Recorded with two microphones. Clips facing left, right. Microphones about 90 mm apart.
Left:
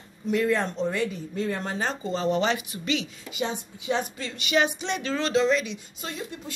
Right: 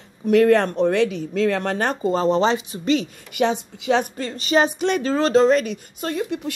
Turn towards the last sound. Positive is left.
turn(degrees=-50)  # may be behind; listen again after turning